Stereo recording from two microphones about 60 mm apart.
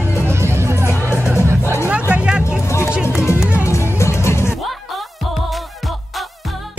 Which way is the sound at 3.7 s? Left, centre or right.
Left.